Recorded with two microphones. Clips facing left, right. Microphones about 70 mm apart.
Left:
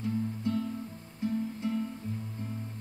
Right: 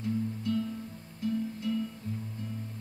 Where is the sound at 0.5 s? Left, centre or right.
Left.